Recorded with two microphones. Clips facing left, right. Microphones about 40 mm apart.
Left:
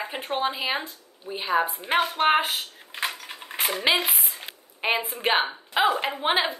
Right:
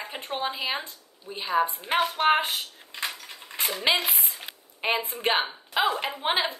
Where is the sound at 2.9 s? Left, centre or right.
Left.